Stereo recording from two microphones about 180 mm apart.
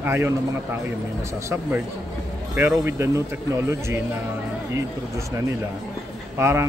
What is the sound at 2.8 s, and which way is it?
A man's voice, 15° right (ahead or behind).